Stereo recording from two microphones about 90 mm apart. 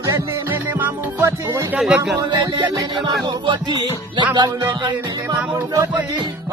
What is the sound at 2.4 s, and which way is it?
Music, 45° right (ahead or behind).